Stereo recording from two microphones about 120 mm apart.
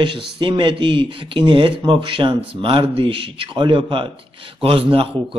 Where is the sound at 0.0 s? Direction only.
40° right (ahead or behind).